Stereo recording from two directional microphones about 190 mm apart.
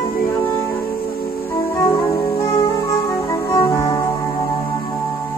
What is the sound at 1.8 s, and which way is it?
Music, 25° left (ahead or behind).